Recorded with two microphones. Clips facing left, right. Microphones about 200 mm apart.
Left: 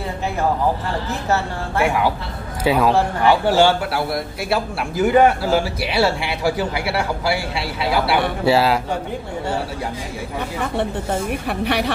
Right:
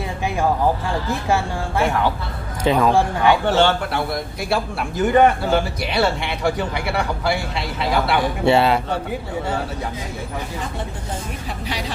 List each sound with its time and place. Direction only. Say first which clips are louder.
1.8 s a man's voice: left 1 dB; 10° left (ahead or behind)
10.6 s speech: left 7 dB; 65° left (ahead or behind)